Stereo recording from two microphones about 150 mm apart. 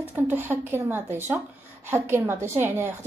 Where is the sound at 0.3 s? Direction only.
15° right (ahead or behind).